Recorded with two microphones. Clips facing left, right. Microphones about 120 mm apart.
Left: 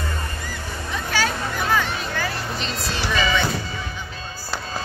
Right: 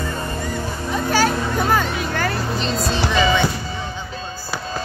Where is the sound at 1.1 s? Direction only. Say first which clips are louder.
Right 5 dB; 45° right (ahead or behind).